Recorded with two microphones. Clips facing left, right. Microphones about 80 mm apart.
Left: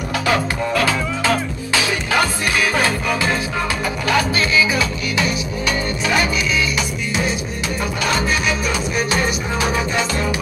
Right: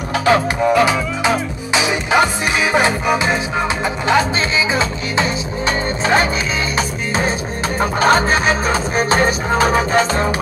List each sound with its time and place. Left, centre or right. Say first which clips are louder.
0.2 s speech: right 6 dB; right
2.7 s music: right 4 dB; right
7.8 s music: right 8 dB; right